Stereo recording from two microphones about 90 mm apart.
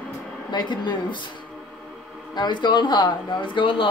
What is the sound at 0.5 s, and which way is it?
Speech, 55° left (ahead or behind).